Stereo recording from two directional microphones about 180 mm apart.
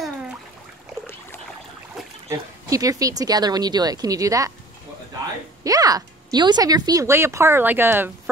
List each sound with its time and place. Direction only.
2.3 s speech: 20° right (ahead or behind)
5.6 s speech: 20° right (ahead or behind)